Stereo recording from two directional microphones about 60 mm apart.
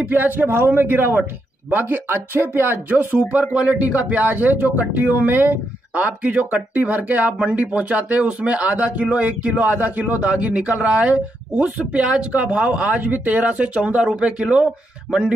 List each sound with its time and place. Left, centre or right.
0.1 s a man's voice: right; by 15.3 s centre